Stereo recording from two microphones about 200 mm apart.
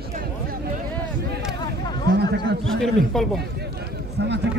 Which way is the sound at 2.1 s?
55° right (ahead or behind).